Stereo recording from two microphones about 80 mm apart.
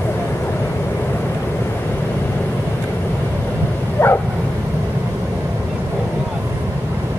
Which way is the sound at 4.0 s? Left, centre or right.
Left.